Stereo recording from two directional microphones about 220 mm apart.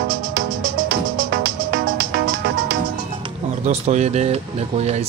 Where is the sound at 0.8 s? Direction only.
50° right (ahead or behind).